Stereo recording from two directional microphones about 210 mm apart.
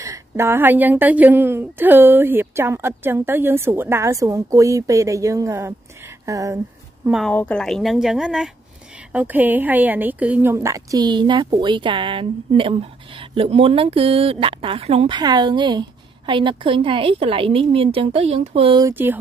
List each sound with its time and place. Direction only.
0.0 s a woman's voice: 15° right (ahead or behind)
7.1 s a woman's voice: centre (ahead or behind)